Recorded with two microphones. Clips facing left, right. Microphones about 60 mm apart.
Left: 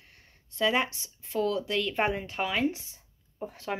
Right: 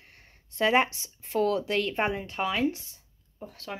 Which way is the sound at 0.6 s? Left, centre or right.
Right.